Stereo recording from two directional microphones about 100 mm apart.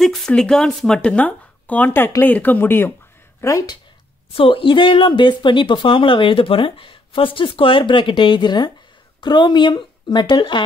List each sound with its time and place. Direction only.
0.0 s a sound: 5° left (ahead or behind)
0.3 s speech: 10° left (ahead or behind)
3.3 s speech: 35° left (ahead or behind)
4.4 s speech: 60° left (ahead or behind)